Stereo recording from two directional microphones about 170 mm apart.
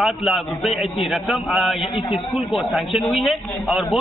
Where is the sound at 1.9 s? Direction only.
35° left (ahead or behind).